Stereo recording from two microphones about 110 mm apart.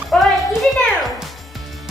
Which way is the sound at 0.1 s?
Centre (ahead or behind).